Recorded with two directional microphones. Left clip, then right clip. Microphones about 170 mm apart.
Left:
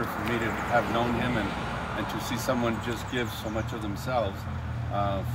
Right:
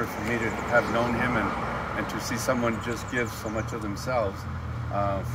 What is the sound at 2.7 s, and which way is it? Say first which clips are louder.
Speech: right 1 dB; 15° right (ahead or behind).